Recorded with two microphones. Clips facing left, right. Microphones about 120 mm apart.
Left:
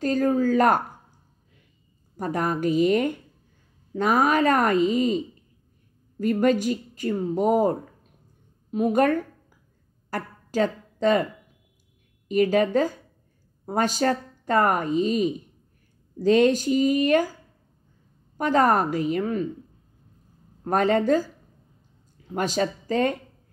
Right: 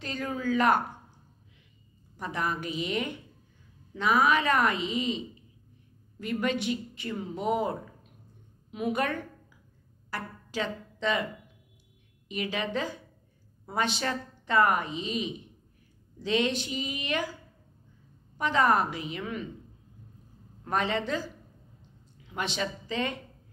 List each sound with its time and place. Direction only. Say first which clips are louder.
0.0 s speech: left 11 dB; 45° left (ahead or behind)
2.1 s a woman's voice: left 6 dB; 45° left (ahead or behind)
10.0 s music: left 6 dB; 45° left (ahead or behind)
12.3 s speech: left 12 dB; 45° left (ahead or behind)
18.4 s speech: left 5 dB; 45° left (ahead or behind)
20.6 s speech: left 8 dB; 45° left (ahead or behind)